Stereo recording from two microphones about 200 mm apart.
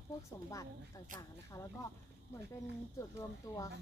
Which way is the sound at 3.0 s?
15° left (ahead or behind).